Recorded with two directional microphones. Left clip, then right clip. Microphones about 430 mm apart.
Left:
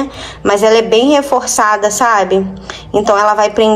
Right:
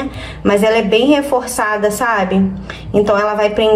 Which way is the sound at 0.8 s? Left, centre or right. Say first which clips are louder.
Left 3 dB; centre.